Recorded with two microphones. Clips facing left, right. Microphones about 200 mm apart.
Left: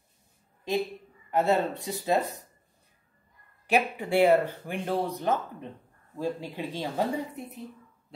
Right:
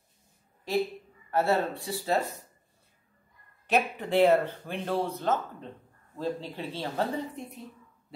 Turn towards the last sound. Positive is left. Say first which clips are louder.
# left 1 dB
turn(degrees=10)  # may be behind; listen again after turning